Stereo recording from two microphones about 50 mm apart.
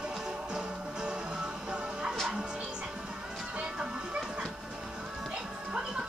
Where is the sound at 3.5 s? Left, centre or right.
Centre.